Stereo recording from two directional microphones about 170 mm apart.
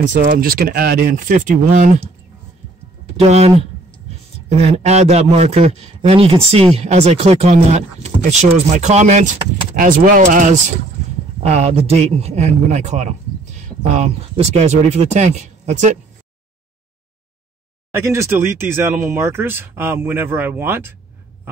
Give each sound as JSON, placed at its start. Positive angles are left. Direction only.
{"t": 0.1, "sound": "speech", "side_deg": -60}
{"t": 3.2, "sound": "a man's voice", "side_deg": -35}
{"t": 9.8, "sound": "speech", "side_deg": -55}
{"t": 11.4, "sound": "a man's voice", "side_deg": -35}
{"t": 17.9, "sound": "speech", "side_deg": -15}